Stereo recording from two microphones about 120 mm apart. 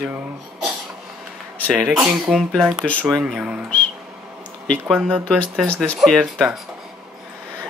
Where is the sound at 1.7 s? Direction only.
Centre (ahead or behind).